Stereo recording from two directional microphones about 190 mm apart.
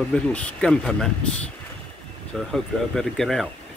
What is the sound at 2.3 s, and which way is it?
Speech, centre (ahead or behind).